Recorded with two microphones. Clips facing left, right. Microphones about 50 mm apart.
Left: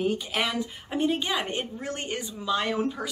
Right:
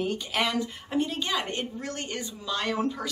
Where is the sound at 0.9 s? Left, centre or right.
Centre.